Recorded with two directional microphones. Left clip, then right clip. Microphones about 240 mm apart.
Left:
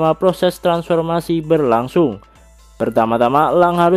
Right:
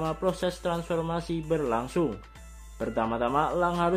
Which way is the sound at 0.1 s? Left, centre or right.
Left.